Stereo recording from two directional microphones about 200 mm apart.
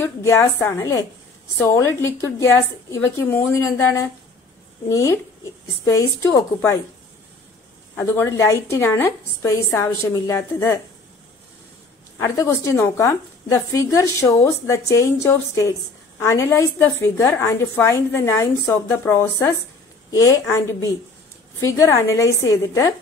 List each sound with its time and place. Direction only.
0.0 s a woman's voice: 10° left (ahead or behind)
7.9 s a woman's voice: 10° left (ahead or behind)
12.2 s a woman's voice: 15° left (ahead or behind)